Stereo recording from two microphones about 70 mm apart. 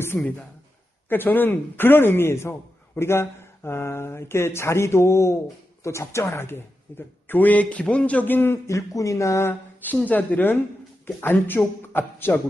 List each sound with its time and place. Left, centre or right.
0.1 s speech: centre
1.0 s speech: left
8.4 s a sound: left
9.9 s a man's voice: left